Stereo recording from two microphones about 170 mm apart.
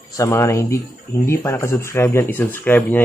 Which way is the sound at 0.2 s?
15° left (ahead or behind).